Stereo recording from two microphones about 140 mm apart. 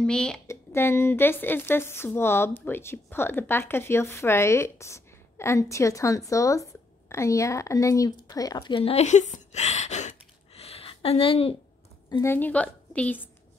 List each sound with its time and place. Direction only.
0.0 s speech: 5° left (ahead or behind)
0.5 s a woman's voice: 15° left (ahead or behind); by 11.5 s 40° left (ahead or behind)
12.2 s a woman's voice: 15° left (ahead or behind)